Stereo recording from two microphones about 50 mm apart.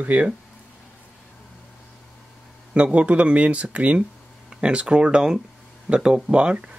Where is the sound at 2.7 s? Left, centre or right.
Right.